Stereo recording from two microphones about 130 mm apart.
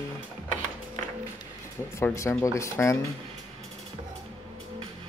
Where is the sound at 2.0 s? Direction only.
20° left (ahead or behind).